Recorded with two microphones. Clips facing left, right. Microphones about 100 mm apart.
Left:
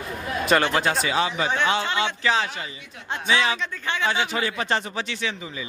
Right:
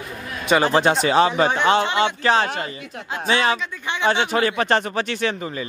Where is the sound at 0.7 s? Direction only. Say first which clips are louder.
Right 5 dB; 25° right (ahead or behind).